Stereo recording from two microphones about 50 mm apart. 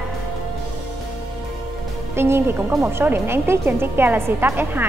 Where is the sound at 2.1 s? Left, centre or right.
Right.